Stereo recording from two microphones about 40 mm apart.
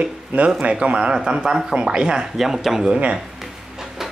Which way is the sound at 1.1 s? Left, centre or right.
Centre.